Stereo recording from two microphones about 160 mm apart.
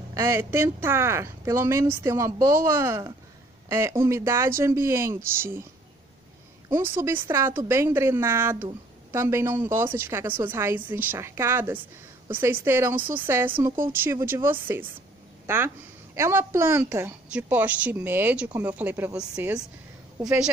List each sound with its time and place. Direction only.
0.1 s speech: 20° right (ahead or behind)
7.0 s speech: 15° right (ahead or behind)